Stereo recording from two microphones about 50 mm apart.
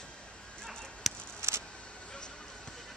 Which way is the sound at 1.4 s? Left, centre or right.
Right.